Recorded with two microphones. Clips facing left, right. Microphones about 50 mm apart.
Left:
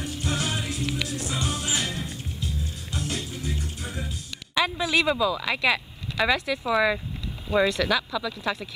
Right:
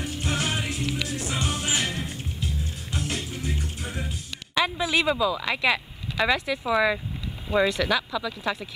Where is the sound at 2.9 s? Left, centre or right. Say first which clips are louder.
Right 1 dB; centre.